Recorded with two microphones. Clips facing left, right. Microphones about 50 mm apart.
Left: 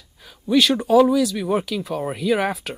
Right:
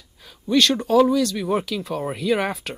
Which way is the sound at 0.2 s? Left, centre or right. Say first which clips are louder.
Left 1 dB; centre.